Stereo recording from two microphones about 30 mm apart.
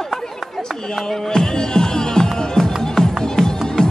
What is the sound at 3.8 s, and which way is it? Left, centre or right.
Music, left.